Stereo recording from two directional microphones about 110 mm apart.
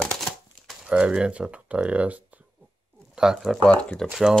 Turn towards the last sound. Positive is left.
turn(degrees=-5)  # may be behind; listen again after turning